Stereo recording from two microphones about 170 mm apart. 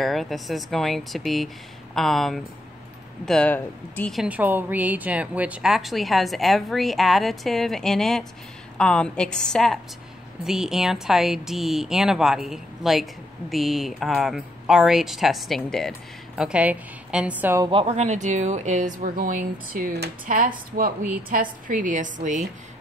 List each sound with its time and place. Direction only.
0.0 s speech: centre (ahead or behind)
4.1 s a woman's voice: 5° right (ahead or behind)
17.6 s speech: 35° right (ahead or behind)